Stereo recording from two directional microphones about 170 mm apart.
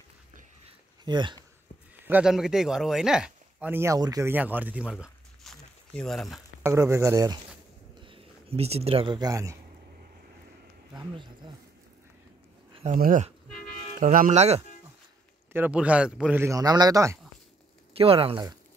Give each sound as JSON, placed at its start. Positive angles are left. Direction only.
{"t": 0.7, "sound": "a sound", "side_deg": -25}
{"t": 2.0, "sound": "speech", "side_deg": -5}
{"t": 6.6, "sound": "a man's voice", "side_deg": -15}
{"t": 8.0, "sound": "speech", "side_deg": -35}
{"t": 11.0, "sound": "speech", "side_deg": -25}
{"t": 12.9, "sound": "speech", "side_deg": -55}
{"t": 15.5, "sound": "a man's voice", "side_deg": -10}
{"t": 17.9, "sound": "speech", "side_deg": -35}